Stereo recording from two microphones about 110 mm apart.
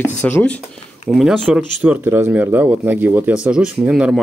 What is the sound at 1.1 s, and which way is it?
Speech, 5° right (ahead or behind).